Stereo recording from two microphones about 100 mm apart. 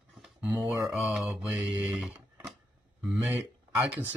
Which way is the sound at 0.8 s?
5° right (ahead or behind).